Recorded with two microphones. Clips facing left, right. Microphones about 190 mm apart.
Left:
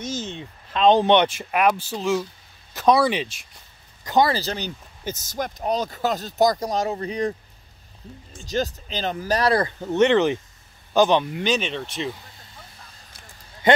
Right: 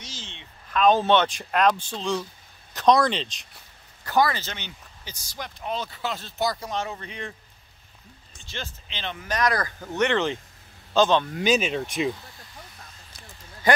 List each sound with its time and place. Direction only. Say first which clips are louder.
0.0 s a sound: left 13 dB; 45° left (ahead or behind)
0.7 s speech: left 3 dB; 25° left (ahead or behind); by 3.3 s 10° left (ahead or behind)
4.0 s speech: left 3 dB; 20° left (ahead or behind)
4.3 s speech: left 7 dB; 35° left (ahead or behind)
8.4 s speech: left 13 dB; 40° left (ahead or behind); by 11.3 s 15° left (ahead or behind)
11.3 s speech: right 1 dB; 5° right (ahead or behind)